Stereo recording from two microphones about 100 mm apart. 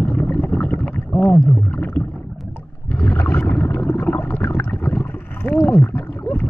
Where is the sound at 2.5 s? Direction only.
15° left (ahead or behind).